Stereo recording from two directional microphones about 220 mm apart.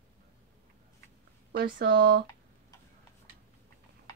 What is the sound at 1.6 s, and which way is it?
Speech, 50° right (ahead or behind).